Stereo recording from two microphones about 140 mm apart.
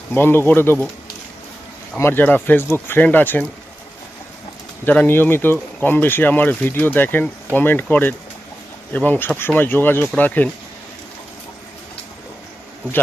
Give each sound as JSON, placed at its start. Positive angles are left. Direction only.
{"t": 0.1, "sound": "speech", "side_deg": 15}
{"t": 2.0, "sound": "speech", "side_deg": 15}
{"t": 4.8, "sound": "speech", "side_deg": 15}